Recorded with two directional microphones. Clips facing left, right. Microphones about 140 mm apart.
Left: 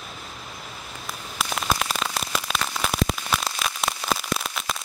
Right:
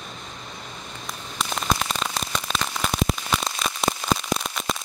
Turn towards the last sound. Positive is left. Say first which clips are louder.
# right 2 dB
turn(degrees=0)  # may be behind; listen again after turning